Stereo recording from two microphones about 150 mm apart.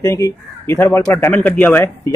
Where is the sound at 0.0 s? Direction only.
20° left (ahead or behind).